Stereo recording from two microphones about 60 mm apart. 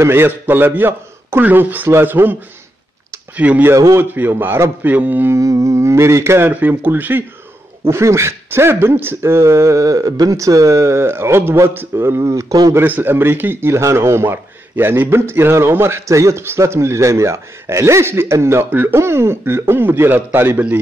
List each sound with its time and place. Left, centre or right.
0.0 s a man's voice: right
3.3 s speech: right
3.7 s a man's voice: right
4.0 s a man's voice: right
5.3 s speech: right
6.8 s a man's voice: right
7.8 s speech: right
12.2 s a man's voice: right
12.8 s speech: right
18.7 s a man's voice: right
18.9 s a man's voice: right